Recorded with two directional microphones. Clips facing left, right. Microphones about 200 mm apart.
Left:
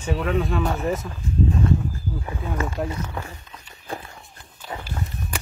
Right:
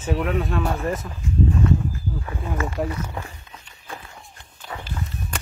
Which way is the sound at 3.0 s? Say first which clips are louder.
Even; 5° right (ahead or behind).